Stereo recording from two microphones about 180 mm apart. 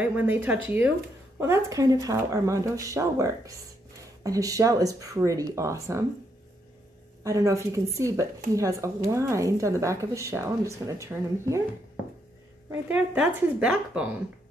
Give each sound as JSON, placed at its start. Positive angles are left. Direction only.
{"t": 0.0, "sound": "speech", "side_deg": -10}
{"t": 7.2, "sound": "speech", "side_deg": -15}
{"t": 12.9, "sound": "speech", "side_deg": -5}